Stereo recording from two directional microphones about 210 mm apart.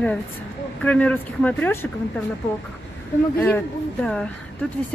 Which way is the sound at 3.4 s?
5° left (ahead or behind).